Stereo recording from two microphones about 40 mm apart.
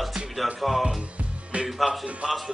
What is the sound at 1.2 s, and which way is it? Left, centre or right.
Music, right.